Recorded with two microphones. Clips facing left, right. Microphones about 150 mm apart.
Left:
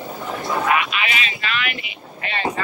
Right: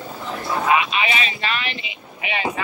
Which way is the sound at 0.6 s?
25° right (ahead or behind).